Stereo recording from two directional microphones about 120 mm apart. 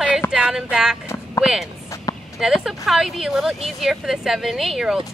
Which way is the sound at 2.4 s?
5° right (ahead or behind).